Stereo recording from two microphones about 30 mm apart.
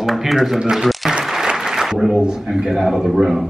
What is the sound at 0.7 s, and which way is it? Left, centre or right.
Applause, centre.